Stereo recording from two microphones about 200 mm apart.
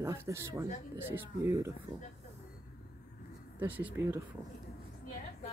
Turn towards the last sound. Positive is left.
turn(degrees=-10)  # may be behind; listen again after turning